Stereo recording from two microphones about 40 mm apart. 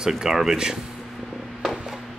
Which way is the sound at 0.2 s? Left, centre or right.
Centre.